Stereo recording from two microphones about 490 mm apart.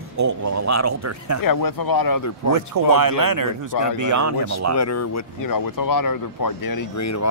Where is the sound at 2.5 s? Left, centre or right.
Right.